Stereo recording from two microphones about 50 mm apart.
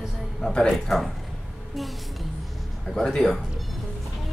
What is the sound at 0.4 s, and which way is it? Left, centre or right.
Speech, centre.